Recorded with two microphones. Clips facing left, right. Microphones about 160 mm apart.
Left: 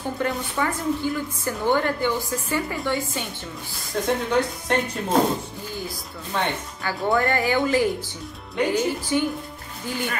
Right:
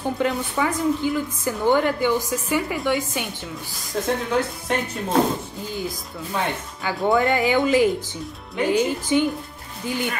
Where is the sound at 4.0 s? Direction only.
Centre (ahead or behind).